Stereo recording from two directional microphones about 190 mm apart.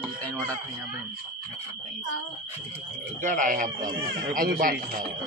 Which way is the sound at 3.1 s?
45° right (ahead or behind).